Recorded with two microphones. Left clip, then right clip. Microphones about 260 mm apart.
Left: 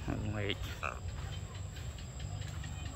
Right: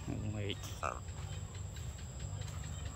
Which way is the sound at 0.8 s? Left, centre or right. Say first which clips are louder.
Right 1 dB; right.